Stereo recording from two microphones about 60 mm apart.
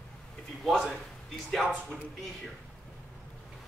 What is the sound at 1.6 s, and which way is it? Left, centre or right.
Speech, left.